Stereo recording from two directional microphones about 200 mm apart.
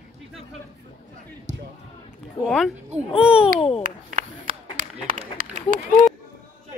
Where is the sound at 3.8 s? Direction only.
40° right (ahead or behind).